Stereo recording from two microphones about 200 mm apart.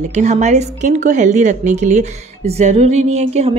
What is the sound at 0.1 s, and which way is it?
A woman's voice, 35° right (ahead or behind).